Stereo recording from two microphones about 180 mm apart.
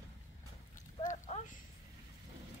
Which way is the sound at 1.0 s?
45° left (ahead or behind).